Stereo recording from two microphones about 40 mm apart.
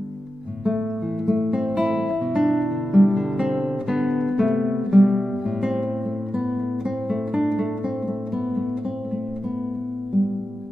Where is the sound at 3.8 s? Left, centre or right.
Centre.